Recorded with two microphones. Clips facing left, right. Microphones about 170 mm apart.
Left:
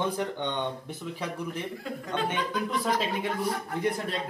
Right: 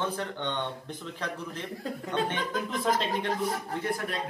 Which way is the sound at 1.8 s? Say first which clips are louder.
Right 2 dB; 40° right (ahead or behind).